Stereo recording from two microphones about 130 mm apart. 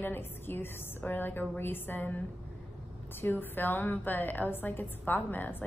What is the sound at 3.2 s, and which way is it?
A woman's voice, 15° left (ahead or behind).